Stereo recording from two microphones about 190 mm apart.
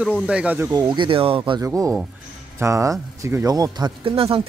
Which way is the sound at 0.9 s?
25° right (ahead or behind).